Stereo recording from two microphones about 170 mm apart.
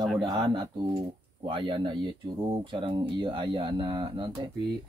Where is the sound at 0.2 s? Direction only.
25° right (ahead or behind).